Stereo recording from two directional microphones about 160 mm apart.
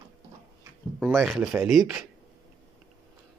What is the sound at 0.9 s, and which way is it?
Speech, centre (ahead or behind).